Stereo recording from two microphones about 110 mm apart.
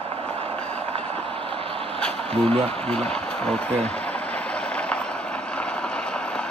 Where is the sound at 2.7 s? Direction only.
10° left (ahead or behind).